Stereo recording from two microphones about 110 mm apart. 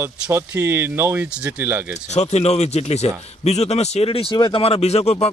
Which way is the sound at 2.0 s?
85° left.